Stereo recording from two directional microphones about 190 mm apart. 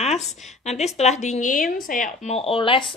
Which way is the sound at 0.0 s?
35° left (ahead or behind).